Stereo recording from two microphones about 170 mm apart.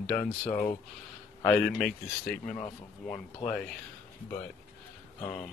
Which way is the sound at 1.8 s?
5° left (ahead or behind).